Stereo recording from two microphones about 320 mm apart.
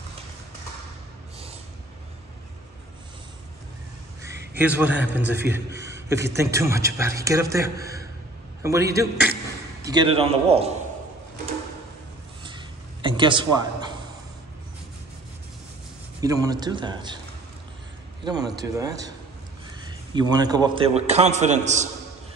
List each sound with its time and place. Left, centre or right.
4.6 s a man's voice: centre
12.4 s a sound: centre
16.2 s a man's voice: centre
18.2 s a man's voice: centre